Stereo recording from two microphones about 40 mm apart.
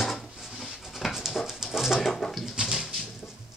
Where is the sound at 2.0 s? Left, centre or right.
Centre.